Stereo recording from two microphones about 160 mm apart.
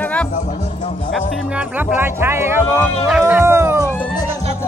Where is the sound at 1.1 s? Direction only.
10° right (ahead or behind).